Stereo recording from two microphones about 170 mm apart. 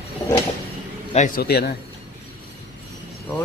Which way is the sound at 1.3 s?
70° left (ahead or behind).